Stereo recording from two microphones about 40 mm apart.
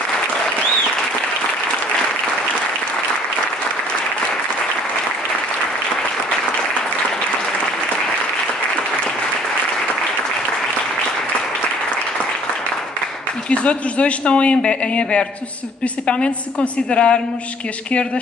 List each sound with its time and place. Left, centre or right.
13.5 s speech: left
16.5 s speech: left